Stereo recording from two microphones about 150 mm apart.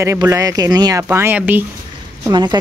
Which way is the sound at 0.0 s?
20° right (ahead or behind).